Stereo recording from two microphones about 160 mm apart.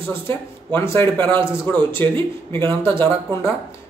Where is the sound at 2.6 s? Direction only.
30° right (ahead or behind).